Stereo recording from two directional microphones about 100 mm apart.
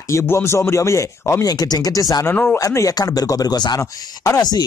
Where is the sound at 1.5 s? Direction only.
40° left (ahead or behind).